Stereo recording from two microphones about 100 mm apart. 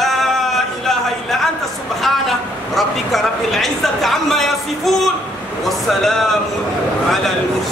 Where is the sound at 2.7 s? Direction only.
Centre (ahead or behind).